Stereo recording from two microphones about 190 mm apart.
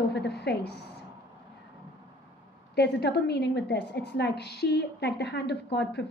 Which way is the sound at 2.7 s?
60° left (ahead or behind).